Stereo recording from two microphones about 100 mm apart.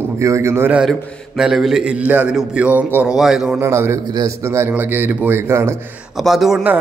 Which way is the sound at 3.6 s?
25° right (ahead or behind).